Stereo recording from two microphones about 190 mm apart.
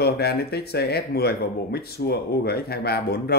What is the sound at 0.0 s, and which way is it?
Speech, 55° left (ahead or behind).